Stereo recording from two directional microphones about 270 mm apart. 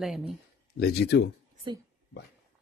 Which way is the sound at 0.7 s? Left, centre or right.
Left.